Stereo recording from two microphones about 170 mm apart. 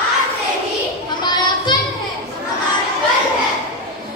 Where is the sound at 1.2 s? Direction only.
25° left (ahead or behind).